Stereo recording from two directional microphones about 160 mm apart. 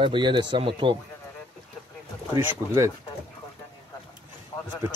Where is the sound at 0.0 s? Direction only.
30° right (ahead or behind).